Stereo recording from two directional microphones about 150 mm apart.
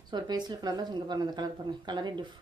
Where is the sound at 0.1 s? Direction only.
30° right (ahead or behind).